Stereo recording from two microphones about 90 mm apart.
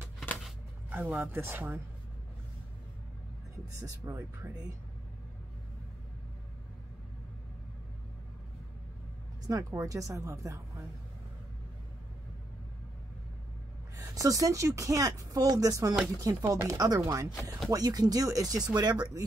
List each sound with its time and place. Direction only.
0.8 s speech: 20° right (ahead or behind)
4.0 s speech: 35° right (ahead or behind)
9.5 s speech: 40° right (ahead or behind)
13.9 s speech: 40° right (ahead or behind)
18.8 s speech: 50° right (ahead or behind)